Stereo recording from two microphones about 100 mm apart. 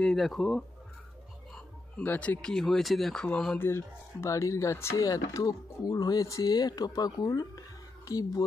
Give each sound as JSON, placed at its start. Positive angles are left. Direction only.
{"t": 0.0, "sound": "speech", "side_deg": 0}
{"t": 2.0, "sound": "speech", "side_deg": 15}
{"t": 3.5, "sound": "speech", "side_deg": 25}